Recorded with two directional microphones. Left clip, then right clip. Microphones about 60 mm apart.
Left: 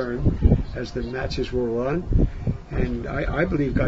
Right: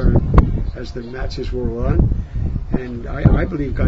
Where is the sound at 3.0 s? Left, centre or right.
Right.